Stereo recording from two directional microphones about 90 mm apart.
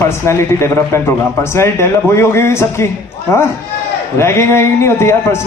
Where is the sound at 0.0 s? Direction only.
30° left (ahead or behind).